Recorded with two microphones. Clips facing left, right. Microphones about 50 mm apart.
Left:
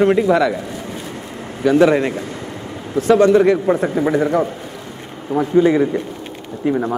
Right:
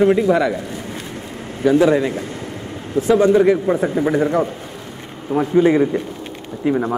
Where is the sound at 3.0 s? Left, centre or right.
Centre.